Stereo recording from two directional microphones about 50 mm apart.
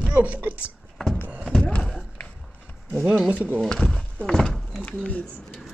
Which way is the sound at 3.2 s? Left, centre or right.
Right.